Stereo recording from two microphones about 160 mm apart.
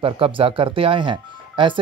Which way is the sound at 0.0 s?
35° right (ahead or behind).